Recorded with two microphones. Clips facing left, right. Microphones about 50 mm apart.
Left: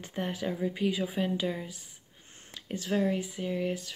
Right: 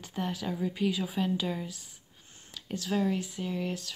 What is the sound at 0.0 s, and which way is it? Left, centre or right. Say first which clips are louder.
Speech: left 1 dB; left.